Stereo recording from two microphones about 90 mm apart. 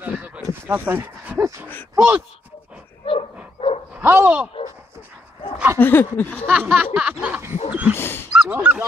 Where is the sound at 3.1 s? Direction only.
90° left.